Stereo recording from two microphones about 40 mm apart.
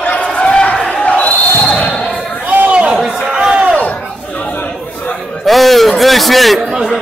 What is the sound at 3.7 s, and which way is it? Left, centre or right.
Chatter, left.